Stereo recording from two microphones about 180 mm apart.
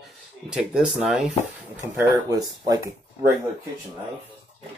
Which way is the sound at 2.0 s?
20° right (ahead or behind).